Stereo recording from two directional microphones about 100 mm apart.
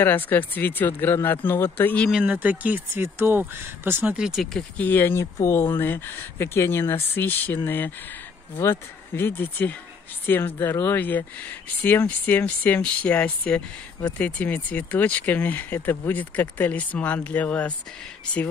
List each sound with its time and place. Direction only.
0.0 s speech: 20° left (ahead or behind)
2.2 s speech: 15° right (ahead or behind)
4.1 s speech: 5° right (ahead or behind)
4.6 s speech: 15° left (ahead or behind)